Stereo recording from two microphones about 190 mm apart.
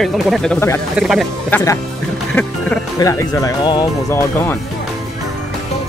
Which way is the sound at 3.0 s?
15° left (ahead or behind).